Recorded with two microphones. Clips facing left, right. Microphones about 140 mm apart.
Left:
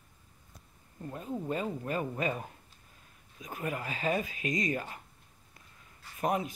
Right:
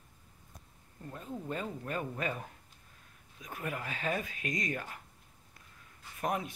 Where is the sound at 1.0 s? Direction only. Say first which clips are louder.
Left 5 dB; 15° left (ahead or behind).